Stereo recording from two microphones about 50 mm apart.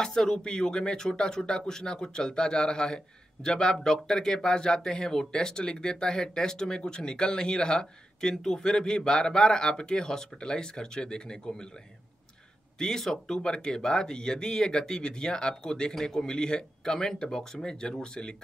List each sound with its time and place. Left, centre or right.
0.0 s speech: centre
12.7 s speech: centre